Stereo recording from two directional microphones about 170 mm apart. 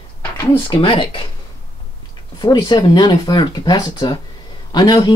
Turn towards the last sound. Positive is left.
turn(degrees=25)  # may be behind; listen again after turning